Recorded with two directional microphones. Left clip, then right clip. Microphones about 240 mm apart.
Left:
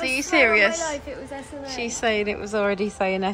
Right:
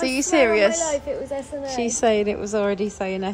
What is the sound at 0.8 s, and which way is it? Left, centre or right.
Speech, right.